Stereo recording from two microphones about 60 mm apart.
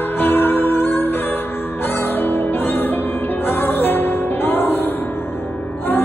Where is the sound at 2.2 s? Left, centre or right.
Left.